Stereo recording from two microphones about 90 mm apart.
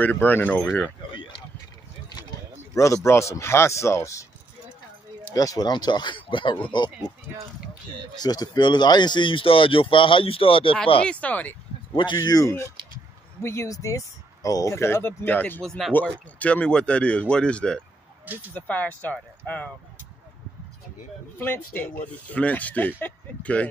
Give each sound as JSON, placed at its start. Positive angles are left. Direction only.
{"t": 0.0, "sound": "speech", "side_deg": 20}
{"t": 1.1, "sound": "a sound", "side_deg": 65}
{"t": 2.7, "sound": "speech", "side_deg": 35}
{"t": 5.3, "sound": "speech", "side_deg": 40}
{"t": 8.2, "sound": "speech", "side_deg": 50}
{"t": 11.1, "sound": "speech", "side_deg": 15}
{"t": 11.9, "sound": "speech", "side_deg": 65}
{"t": 12.2, "sound": "speech", "side_deg": 45}
{"t": 13.4, "sound": "speech", "side_deg": 30}
{"t": 15.6, "sound": "speech", "side_deg": 5}
{"t": 21.4, "sound": "speech", "side_deg": 20}